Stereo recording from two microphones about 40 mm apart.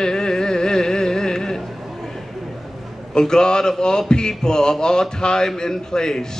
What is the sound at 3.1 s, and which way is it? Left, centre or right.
Speech, centre.